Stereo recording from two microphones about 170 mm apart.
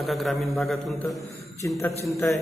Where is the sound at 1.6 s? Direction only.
15° left (ahead or behind).